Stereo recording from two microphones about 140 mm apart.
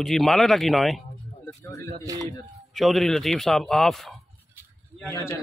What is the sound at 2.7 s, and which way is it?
Speech, centre (ahead or behind).